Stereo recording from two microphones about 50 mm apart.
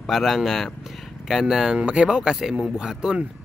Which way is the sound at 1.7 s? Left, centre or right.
Right.